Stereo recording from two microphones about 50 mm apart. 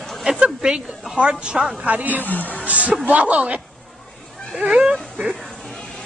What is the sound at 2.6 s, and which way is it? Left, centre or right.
Speech, right.